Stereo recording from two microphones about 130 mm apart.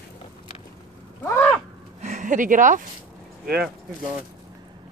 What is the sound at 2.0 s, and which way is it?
Speech, 70° right (ahead or behind).